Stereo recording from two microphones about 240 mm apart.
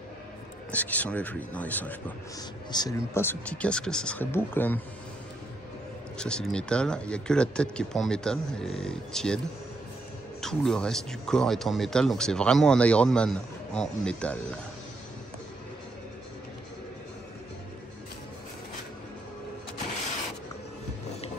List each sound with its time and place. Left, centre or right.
0.7 s speech: centre
6.1 s speech: centre
10.4 s speech: centre